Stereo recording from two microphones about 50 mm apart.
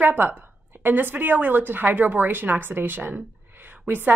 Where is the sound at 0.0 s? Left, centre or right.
Right.